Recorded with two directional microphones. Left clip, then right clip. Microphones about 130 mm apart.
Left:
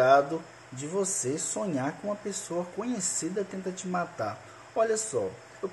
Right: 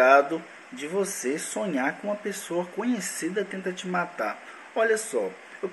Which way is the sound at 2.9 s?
15° left (ahead or behind).